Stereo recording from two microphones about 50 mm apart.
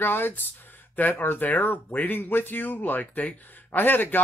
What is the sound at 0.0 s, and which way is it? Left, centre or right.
Speech, left.